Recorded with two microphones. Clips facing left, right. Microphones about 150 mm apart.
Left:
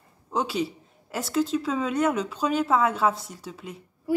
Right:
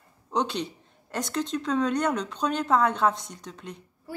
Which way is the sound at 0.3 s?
5° left (ahead or behind).